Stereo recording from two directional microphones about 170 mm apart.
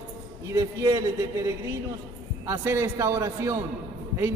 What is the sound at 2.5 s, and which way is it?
A man's voice, 15° right (ahead or behind).